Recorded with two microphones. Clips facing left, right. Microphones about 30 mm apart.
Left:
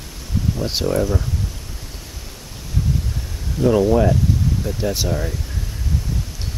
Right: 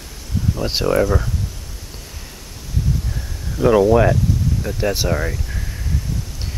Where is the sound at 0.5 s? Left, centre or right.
Centre.